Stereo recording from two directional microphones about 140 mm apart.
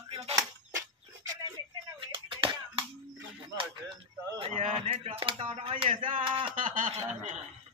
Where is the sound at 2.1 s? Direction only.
35° right (ahead or behind).